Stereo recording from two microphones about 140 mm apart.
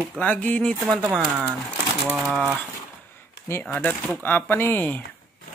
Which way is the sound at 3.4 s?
15° left (ahead or behind).